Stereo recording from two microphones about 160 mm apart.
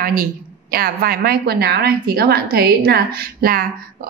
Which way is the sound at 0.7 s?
70° right (ahead or behind).